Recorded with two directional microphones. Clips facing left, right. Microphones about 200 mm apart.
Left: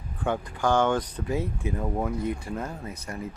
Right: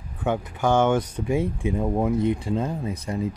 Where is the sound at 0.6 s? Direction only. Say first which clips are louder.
Right 3 dB; 20° right (ahead or behind).